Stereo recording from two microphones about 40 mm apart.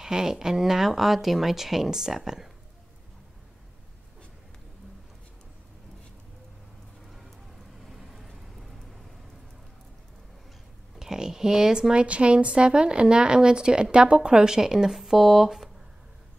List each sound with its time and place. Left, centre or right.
0.0 s speech: centre
7.8 s vehicle: centre
11.0 s a sound: centre
11.9 s a woman's voice: right; by 15.7 s centre